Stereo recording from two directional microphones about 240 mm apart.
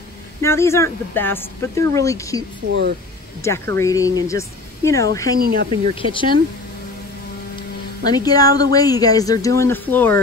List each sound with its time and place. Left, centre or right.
0.4 s speech: centre
3.4 s speech: centre
5.4 s speech: right
5.9 s speech: left
8.0 s speech: centre